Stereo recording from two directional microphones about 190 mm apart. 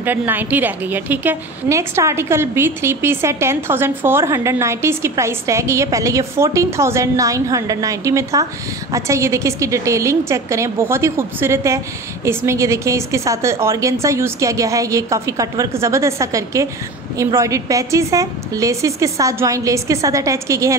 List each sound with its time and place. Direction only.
0.0 s a woman's voice: 10° right (ahead or behind)